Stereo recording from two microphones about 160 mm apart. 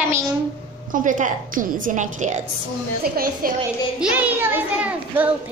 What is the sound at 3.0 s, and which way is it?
Speech, 65° right (ahead or behind).